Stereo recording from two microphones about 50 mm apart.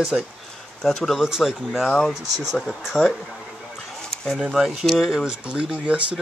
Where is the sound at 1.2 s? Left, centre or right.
Centre.